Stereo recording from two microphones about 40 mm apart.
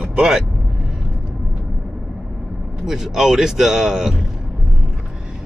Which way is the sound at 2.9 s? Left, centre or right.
Centre.